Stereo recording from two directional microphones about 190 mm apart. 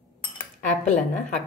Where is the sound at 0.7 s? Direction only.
40° left (ahead or behind).